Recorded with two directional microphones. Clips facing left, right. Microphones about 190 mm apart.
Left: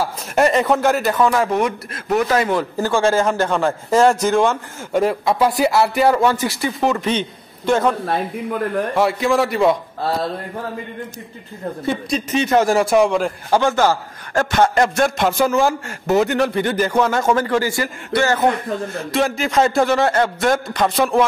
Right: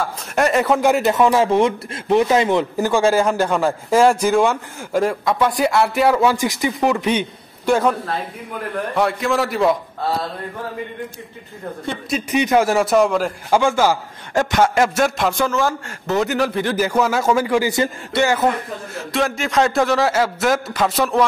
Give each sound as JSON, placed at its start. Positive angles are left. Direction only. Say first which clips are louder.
{"t": 0.0, "sound": "a man's voice", "louder": "left 2 dB", "side_deg": 0}
{"t": 6.3, "sound": "a man's voice", "louder": "right 1 dB", "side_deg": -15}
{"t": 8.9, "sound": "a man's voice", "louder": "left 1 dB", "side_deg": 0}
{"t": 11.8, "sound": "a man's voice", "louder": "left 3 dB", "side_deg": 5}
{"t": 12.3, "sound": "a man's voice", "louder": "even", "side_deg": -15}
{"t": 12.6, "sound": "a man's voice", "louder": "left 1 dB", "side_deg": -5}
{"t": 15.4, "sound": "a man's voice", "louder": "left 3 dB", "side_deg": 15}
{"t": 16.3, "sound": "a man's voice", "louder": "left 1 dB", "side_deg": 0}
{"t": 19.1, "sound": "a man's voice", "louder": "left 1 dB", "side_deg": 0}